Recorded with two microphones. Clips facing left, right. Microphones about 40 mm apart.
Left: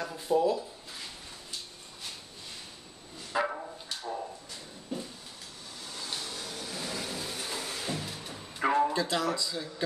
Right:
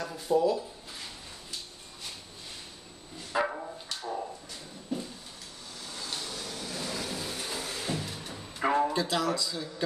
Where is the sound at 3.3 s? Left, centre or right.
Centre.